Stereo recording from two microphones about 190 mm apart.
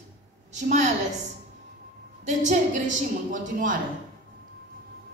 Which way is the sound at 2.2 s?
40° right (ahead or behind).